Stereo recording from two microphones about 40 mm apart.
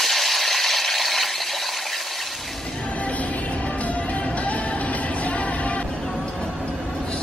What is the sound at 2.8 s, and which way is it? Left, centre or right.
Music, left.